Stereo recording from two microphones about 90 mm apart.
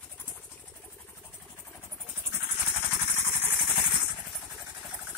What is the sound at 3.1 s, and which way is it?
Engine, 25° right (ahead or behind).